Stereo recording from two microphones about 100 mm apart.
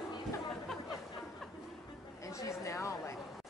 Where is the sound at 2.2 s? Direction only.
30° left (ahead or behind).